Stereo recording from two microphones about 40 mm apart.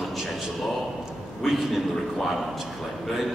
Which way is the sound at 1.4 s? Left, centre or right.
Centre.